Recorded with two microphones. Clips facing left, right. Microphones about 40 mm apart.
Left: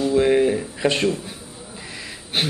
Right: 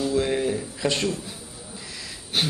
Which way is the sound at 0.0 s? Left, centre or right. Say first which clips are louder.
Left 6 dB; left.